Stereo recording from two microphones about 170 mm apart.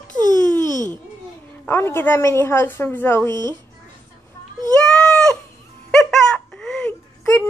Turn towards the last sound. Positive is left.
turn(degrees=10)  # may be behind; listen again after turning